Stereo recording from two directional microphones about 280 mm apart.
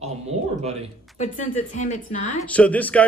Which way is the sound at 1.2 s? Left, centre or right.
Left.